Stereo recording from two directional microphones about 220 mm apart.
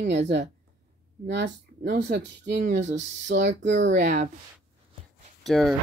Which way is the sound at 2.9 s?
50° right (ahead or behind).